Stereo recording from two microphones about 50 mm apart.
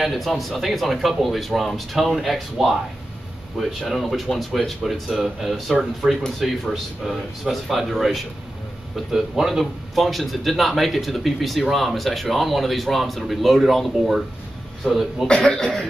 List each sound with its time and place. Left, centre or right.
0.0 s speech: centre
15.2 s speech: centre